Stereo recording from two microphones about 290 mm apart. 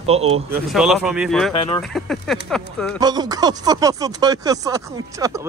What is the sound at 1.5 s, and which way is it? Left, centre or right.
Speech, centre.